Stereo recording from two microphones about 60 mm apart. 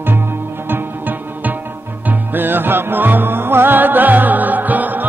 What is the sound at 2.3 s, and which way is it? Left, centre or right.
Music, right.